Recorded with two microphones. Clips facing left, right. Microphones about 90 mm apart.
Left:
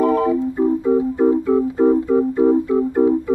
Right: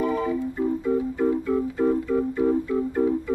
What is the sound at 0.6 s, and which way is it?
Music, 30° left (ahead or behind).